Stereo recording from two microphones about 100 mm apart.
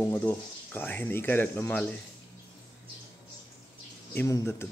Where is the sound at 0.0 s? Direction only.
15° left (ahead or behind).